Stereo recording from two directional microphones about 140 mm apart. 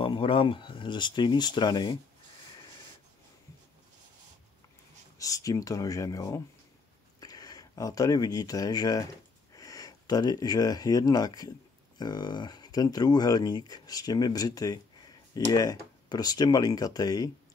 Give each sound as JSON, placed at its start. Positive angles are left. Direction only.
{"t": 0.0, "sound": "speech", "side_deg": 35}
{"t": 5.2, "sound": "speech", "side_deg": 25}